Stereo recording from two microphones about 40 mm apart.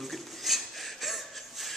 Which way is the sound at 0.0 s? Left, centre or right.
Centre.